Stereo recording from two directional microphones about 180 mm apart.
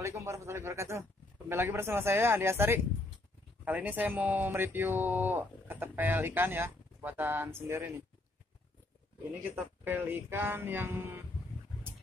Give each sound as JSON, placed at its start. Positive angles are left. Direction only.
{"t": 0.0, "sound": "speech", "side_deg": -15}
{"t": 9.8, "sound": "speech", "side_deg": -10}